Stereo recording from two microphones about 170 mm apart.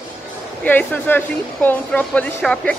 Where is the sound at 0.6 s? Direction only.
10° left (ahead or behind).